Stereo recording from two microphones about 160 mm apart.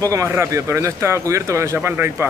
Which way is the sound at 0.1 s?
20° right (ahead or behind).